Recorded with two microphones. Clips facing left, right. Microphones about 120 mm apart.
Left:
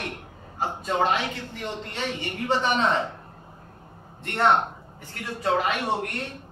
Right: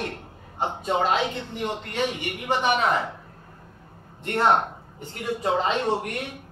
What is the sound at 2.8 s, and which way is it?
Speech, 30° left (ahead or behind).